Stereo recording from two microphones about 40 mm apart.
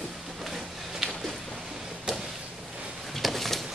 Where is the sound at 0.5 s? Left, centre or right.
Centre.